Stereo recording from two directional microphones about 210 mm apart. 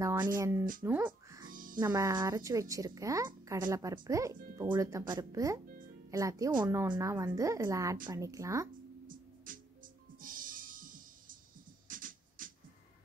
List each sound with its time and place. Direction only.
0.0 s speech: 15° right (ahead or behind)
0.8 s music: 10° right (ahead or behind)
1.5 s music: 40° right (ahead or behind)
1.8 s a woman's voice: 15° right (ahead or behind)
9.0 s music: 40° right (ahead or behind)